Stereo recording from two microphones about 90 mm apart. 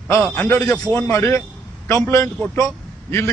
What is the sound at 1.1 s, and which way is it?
A man's voice, 30° left (ahead or behind).